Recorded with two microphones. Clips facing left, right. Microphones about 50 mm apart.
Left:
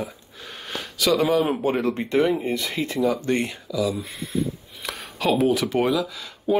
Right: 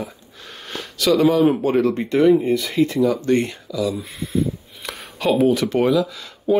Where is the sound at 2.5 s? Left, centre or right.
Left.